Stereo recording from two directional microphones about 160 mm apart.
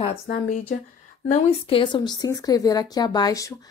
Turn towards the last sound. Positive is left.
turn(degrees=20)  # may be behind; listen again after turning